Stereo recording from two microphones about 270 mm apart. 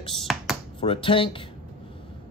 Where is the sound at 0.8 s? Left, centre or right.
Centre.